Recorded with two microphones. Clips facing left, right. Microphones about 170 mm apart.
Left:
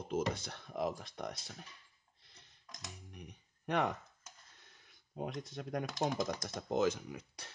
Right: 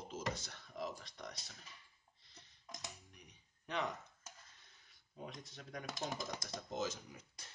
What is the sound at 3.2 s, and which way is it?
Speech, 60° left (ahead or behind).